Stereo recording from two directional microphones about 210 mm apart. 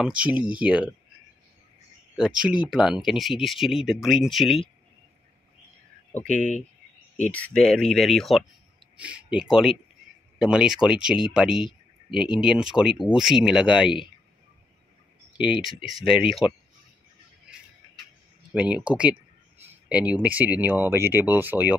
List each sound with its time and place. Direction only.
0.0 s speech: 5° right (ahead or behind)
2.1 s speech: 5° right (ahead or behind)
6.2 s speech: 35° left (ahead or behind)
7.2 s speech: 5° left (ahead or behind)
15.3 s speech: 5° right (ahead or behind)
18.5 s speech: 5° right (ahead or behind)